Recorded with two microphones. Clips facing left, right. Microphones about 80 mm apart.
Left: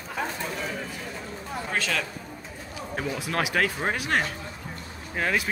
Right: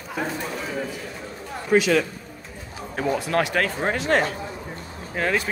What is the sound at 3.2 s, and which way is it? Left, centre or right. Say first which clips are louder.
Speech: right 2 dB; centre.